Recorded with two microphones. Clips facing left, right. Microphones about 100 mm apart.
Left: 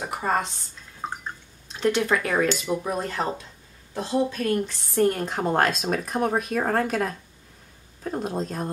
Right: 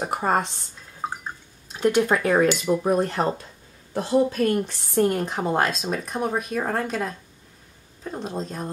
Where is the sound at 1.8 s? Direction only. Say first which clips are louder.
Right 3 dB; 10° right (ahead or behind).